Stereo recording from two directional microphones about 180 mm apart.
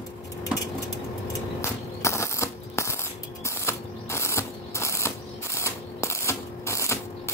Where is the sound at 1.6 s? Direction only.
15° left (ahead or behind).